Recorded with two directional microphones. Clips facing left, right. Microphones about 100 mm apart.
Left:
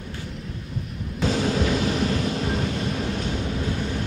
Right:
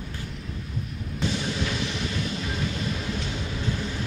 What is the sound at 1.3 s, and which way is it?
Vehicle, 40° left (ahead or behind).